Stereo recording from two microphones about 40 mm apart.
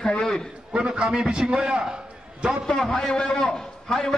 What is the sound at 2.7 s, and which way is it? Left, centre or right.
A man's voice, centre.